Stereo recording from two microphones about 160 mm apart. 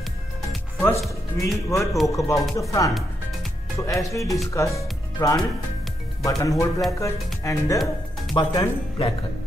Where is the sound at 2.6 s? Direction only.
20° left (ahead or behind).